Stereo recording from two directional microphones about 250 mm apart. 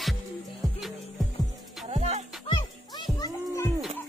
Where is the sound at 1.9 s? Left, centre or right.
Right.